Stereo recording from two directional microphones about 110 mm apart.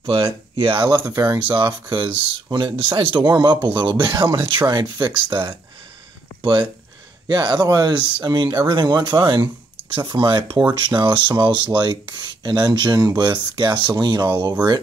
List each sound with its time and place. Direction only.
0.0 s speech: 55° right (ahead or behind)
0.8 s speech: 35° right (ahead or behind)
1.5 s speech: 45° right (ahead or behind)
6.4 s speech: 45° right (ahead or behind)